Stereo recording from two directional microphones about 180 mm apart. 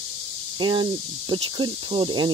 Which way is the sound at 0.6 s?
25° right (ahead or behind).